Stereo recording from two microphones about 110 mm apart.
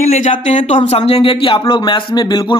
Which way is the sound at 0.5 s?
90° left.